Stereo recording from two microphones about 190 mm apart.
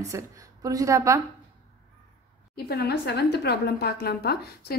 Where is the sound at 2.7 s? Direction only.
55° left (ahead or behind).